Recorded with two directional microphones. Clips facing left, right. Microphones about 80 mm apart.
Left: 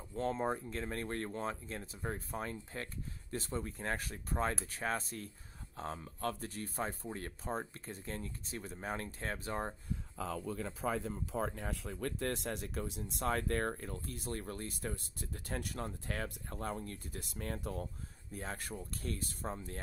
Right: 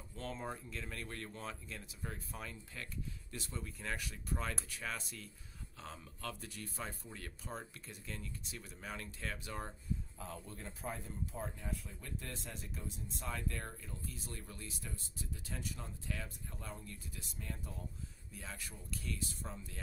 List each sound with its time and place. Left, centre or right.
0.1 s speech: left
10.9 s speech: left
18.3 s speech: left